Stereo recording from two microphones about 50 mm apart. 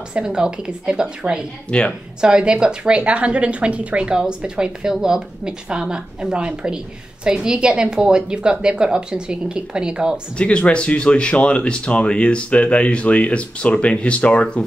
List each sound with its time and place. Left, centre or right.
0.1 s a woman's voice: centre
1.7 s speech: left
2.2 s a woman's voice: centre
10.3 s speech: left